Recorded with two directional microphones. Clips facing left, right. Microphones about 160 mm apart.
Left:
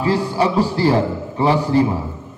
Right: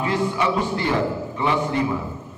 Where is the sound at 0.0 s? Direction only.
35° left (ahead or behind).